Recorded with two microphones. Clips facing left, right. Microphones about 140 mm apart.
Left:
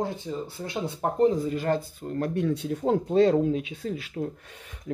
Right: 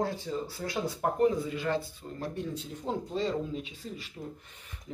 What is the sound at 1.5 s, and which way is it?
Speech, 45° left (ahead or behind).